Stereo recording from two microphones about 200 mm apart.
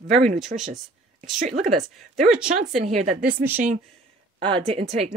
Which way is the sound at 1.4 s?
35° right (ahead or behind).